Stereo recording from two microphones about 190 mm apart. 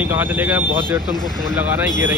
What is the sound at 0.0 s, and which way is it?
Speech, 10° right (ahead or behind).